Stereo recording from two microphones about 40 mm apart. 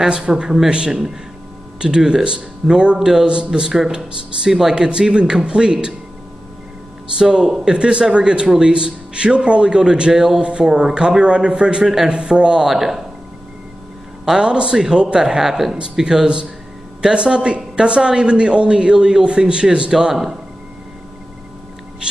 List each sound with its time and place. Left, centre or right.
0.1 s a man's voice: centre
1.8 s a man's voice: right
4.5 s a man's voice: centre
7.2 s a man's voice: centre
11.8 s speech: centre
12.1 s a man's voice: right
12.6 s speech: centre
14.4 s a man's voice: right